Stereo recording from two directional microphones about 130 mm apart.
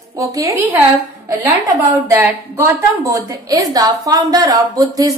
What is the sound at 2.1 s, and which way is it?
A woman's voice, 15° right (ahead or behind).